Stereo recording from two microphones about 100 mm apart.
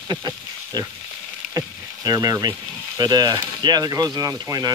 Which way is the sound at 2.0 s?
40° right (ahead or behind).